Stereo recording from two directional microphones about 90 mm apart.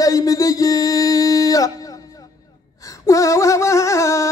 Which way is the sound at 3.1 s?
35° left (ahead or behind).